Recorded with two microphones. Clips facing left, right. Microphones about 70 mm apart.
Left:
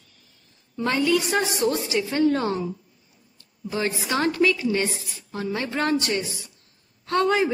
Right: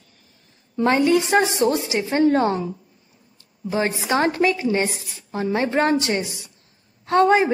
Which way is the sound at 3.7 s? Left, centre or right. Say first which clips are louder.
Right 4 dB; right.